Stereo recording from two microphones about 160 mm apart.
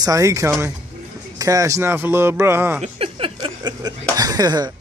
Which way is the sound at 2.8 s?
40° right (ahead or behind).